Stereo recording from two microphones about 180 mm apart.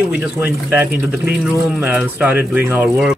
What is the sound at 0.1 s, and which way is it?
Speech, 5° right (ahead or behind).